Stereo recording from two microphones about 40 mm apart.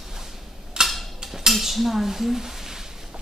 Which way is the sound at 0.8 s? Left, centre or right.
Centre.